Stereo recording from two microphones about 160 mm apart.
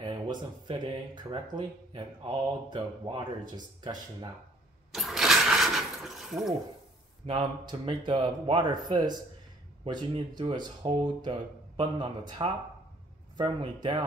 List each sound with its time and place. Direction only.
0.0 s speech: 30° right (ahead or behind)
4.9 s a sound: centre (ahead or behind)
7.2 s speech: 35° right (ahead or behind)